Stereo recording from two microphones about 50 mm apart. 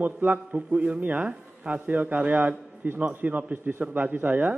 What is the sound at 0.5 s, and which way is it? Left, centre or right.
A man's voice, right.